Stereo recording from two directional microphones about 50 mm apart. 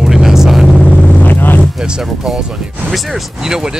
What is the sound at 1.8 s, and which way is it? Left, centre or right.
Music, centre.